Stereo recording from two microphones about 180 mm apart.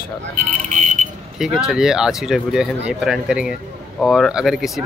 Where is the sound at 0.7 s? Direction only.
40° right (ahead or behind).